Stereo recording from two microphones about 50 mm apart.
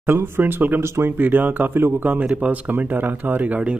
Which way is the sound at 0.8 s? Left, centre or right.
Right.